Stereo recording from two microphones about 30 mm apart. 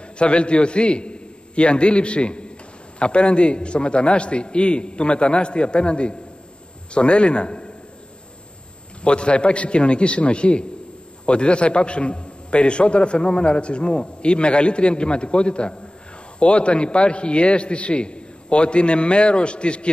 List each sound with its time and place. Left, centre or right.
0.2 s a man's voice: left
9.0 s a man's voice: left